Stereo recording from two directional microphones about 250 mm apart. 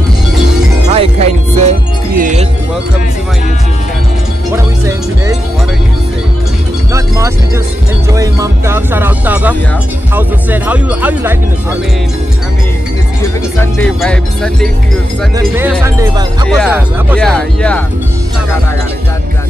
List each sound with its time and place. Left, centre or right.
0.8 s music: right
6.9 s music: centre
8.1 s speech: centre
13.6 s speech: centre
15.3 s speech: centre